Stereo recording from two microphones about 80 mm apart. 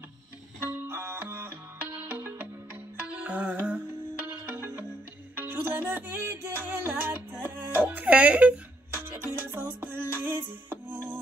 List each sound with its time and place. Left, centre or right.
0.8 s music: right; by 3.8 s centre
4.3 s music: right
8.0 s music: centre